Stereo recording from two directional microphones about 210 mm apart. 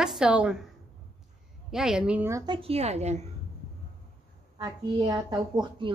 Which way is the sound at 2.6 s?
30° right (ahead or behind).